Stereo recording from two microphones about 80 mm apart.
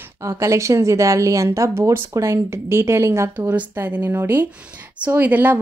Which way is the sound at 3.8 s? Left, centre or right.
Right.